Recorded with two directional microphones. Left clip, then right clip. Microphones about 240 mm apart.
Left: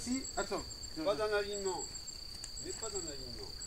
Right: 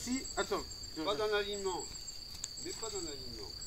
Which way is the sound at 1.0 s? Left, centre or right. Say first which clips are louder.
Even; centre.